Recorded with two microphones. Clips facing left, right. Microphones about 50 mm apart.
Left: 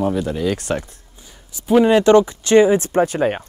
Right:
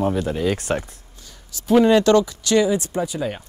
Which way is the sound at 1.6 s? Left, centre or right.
Centre.